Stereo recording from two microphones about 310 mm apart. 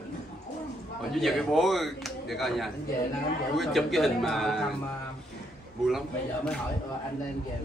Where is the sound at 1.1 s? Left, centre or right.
Centre.